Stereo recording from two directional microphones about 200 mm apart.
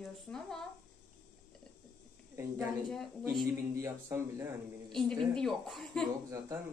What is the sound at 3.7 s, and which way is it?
Speech, 15° right (ahead or behind).